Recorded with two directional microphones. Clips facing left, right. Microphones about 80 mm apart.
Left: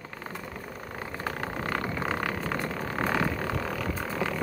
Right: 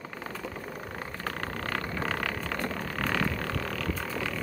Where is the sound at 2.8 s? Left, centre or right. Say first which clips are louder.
Left 4 dB; left.